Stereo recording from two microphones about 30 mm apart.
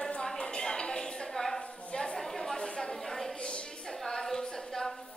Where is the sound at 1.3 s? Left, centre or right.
Centre.